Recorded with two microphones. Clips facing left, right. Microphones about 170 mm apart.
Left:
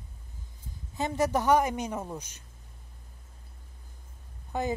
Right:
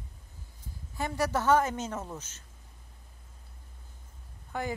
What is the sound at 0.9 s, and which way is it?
A woman's voice, 20° left (ahead or behind).